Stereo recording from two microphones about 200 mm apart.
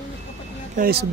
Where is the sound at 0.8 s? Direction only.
50° right (ahead or behind).